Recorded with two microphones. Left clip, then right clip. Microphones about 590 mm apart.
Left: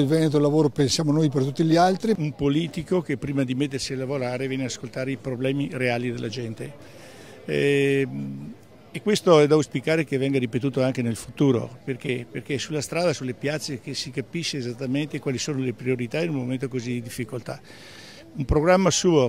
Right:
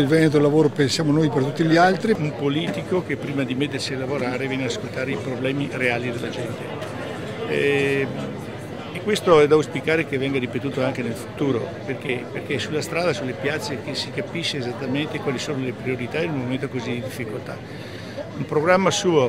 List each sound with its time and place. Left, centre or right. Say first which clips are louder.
0.0 s speech: right 4 dB; left
7.5 s speech: right 1 dB; left
18.5 s speech: right 1 dB; left